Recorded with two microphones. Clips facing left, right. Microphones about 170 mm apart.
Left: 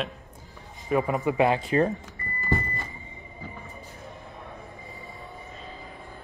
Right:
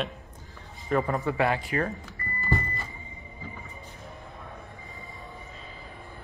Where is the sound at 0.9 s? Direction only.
10° left (ahead or behind).